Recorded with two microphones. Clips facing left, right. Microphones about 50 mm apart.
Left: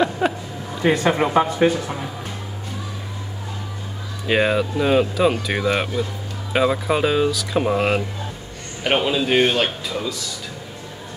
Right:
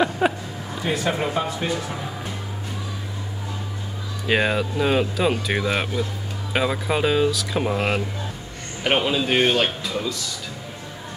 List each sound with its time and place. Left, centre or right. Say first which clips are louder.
0.2 s music: even; centre
0.8 s speech: left 6 dB; left
4.3 s speech: left 2 dB; centre